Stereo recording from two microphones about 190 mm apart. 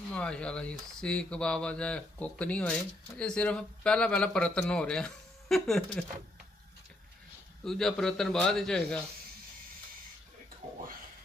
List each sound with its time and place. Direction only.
0.1 s speech: 5° left (ahead or behind)
7.6 s speech: centre (ahead or behind)
10.6 s a sound: 35° right (ahead or behind)